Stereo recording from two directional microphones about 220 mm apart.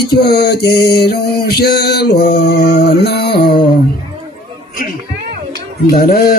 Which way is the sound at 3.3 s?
20° left (ahead or behind).